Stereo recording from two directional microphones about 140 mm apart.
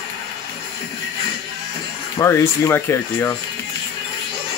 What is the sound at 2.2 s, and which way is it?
Speech, 20° left (ahead or behind).